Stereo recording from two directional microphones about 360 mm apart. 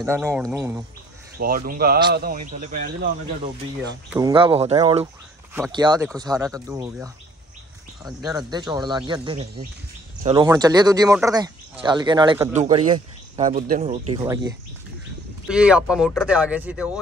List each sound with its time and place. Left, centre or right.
0.0 s speech: centre
1.4 s speech: right
3.8 s speech: centre
14.1 s speech: centre
15.4 s speech: centre